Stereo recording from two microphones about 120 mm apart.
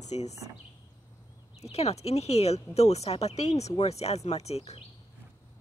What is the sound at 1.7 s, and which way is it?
Speech, 60° left (ahead or behind).